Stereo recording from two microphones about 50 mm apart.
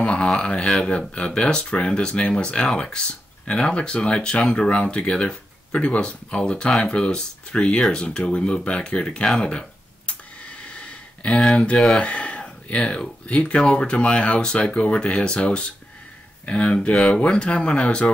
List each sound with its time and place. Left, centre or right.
0.0 s speech: left
10.6 s a sound: left
13.3 s speech: left